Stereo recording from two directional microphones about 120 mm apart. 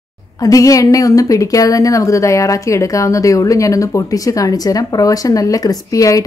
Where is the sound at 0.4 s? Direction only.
30° left (ahead or behind).